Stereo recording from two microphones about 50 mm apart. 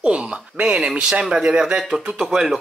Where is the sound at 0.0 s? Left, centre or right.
Right.